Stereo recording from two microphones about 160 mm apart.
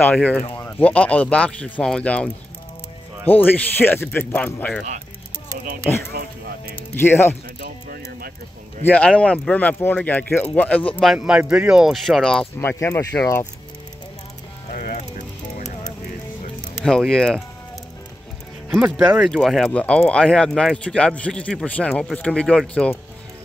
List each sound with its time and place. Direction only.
0.0 s speech: 10° left (ahead or behind)
6.7 s speech: 15° left (ahead or behind)
7.6 s speech: 70° right (ahead or behind)
8.8 s speech: 5° left (ahead or behind)
12.5 s speech: 15° left (ahead or behind)
14.7 s ratchet: 60° left (ahead or behind)
16.8 s speech: 5° left (ahead or behind)
18.7 s speech: 10° right (ahead or behind); by 22.9 s 5° left (ahead or behind)